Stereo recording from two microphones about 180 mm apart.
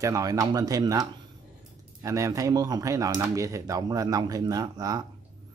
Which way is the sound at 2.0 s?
15° right (ahead or behind).